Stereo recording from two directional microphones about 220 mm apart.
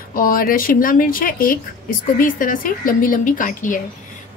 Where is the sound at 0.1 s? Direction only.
40° left (ahead or behind).